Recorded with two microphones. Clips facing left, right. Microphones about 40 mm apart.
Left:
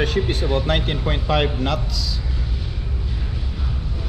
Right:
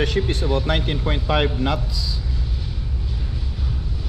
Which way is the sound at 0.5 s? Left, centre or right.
Left.